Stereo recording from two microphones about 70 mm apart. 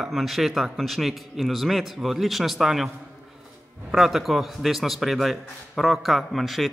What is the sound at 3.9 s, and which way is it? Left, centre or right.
Speech, centre.